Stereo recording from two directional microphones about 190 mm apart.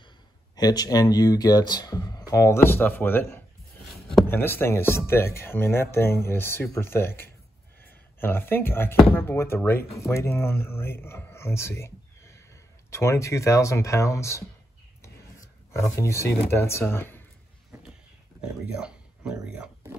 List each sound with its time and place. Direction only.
0.6 s speech: 20° left (ahead or behind)
3.9 s a sound: centre (ahead or behind)
4.3 s speech: 10° left (ahead or behind)
18.8 s speech: 5° right (ahead or behind)